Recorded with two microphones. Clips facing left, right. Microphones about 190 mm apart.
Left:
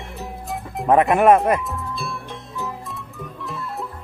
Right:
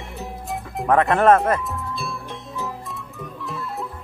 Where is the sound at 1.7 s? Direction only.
Centre (ahead or behind).